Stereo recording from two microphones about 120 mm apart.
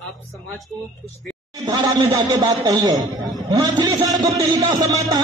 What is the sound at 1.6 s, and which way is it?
A man's voice, 30° right (ahead or behind).